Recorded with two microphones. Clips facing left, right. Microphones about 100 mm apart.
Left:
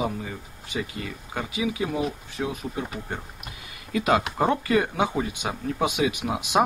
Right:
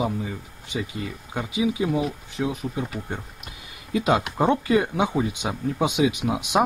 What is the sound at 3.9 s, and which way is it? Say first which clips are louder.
Speech: right 1 dB; 20° right (ahead or behind).